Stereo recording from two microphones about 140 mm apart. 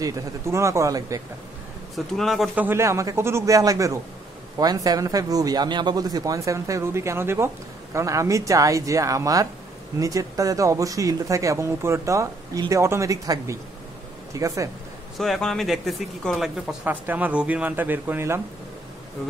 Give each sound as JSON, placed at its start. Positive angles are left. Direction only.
{"t": 0.0, "sound": "speech", "side_deg": -20}
{"t": 2.1, "sound": "speech", "side_deg": 0}
{"t": 2.5, "sound": "speech", "side_deg": -15}
{"t": 15.1, "sound": "speech", "side_deg": 0}